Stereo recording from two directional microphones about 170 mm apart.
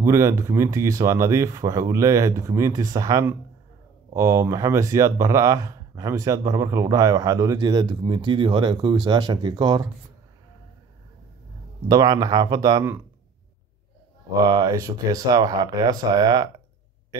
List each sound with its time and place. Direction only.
0.0 s speech: 15° right (ahead or behind)
11.9 s speech: 20° right (ahead or behind)
14.4 s speech: 20° right (ahead or behind)